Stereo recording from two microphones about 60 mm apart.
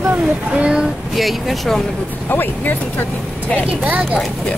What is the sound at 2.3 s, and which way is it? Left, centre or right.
Speech, left.